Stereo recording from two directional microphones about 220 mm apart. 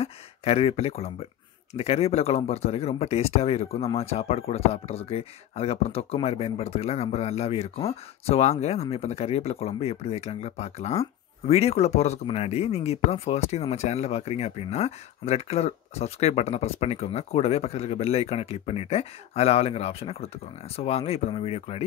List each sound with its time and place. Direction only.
0.0 s speech: 25° left (ahead or behind)